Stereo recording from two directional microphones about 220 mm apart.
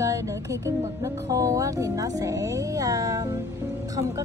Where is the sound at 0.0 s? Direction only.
15° right (ahead or behind).